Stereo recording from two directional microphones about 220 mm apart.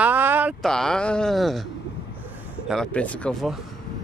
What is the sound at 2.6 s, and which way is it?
Speech, 5° left (ahead or behind).